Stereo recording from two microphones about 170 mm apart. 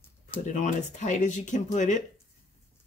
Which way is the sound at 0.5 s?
45° left (ahead or behind).